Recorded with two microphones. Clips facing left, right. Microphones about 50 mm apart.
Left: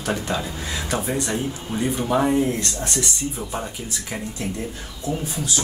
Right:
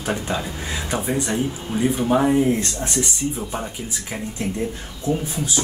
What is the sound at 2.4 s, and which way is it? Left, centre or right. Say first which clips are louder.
Speech: right 3 dB; right.